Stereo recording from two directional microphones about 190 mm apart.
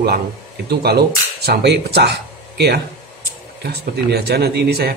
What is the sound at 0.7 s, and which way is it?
Speech, 55° right (ahead or behind).